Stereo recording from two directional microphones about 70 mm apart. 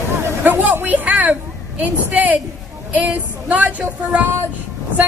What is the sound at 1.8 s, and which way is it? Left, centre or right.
A woman's voice, right.